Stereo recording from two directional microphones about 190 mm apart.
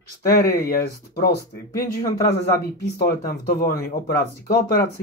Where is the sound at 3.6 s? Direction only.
50° left (ahead or behind).